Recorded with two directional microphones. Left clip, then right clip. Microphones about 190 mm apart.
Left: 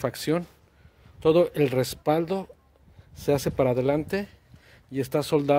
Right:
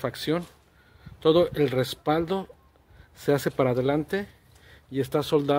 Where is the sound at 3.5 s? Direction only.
10° left (ahead or behind).